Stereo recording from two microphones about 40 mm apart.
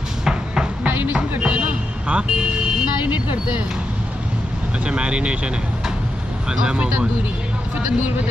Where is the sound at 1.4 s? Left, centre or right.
Right.